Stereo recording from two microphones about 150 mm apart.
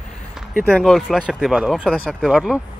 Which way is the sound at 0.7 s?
Centre (ahead or behind).